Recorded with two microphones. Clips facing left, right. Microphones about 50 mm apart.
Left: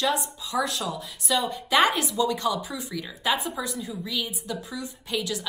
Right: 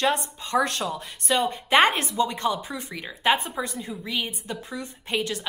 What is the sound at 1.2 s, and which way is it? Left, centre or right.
Speech, right.